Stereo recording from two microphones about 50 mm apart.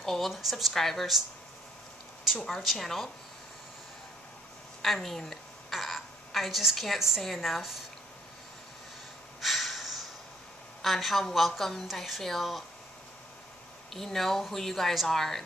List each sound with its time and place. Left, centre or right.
0.0 s a woman's voice: centre
2.2 s a woman's voice: centre
4.8 s a sound: centre
7.2 s a woman's voice: centre
9.4 s snort: centre
10.8 s a woman's voice: centre
13.9 s a woman's voice: centre